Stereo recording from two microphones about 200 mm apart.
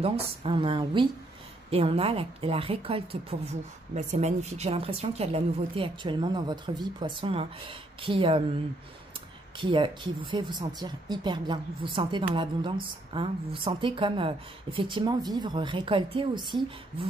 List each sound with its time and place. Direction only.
0.0 s speech: 30° right (ahead or behind)
9.6 s speech: 25° right (ahead or behind)